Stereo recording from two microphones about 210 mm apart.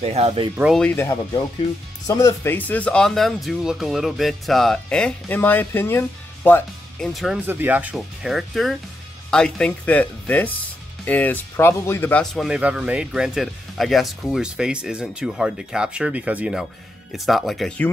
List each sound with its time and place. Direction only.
0.0 s speech: 30° right (ahead or behind)
0.6 s speech: centre (ahead or behind)
7.4 s speech: 10° right (ahead or behind)